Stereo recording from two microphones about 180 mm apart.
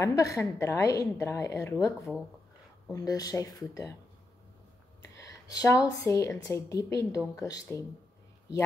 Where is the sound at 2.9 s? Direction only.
20° left (ahead or behind).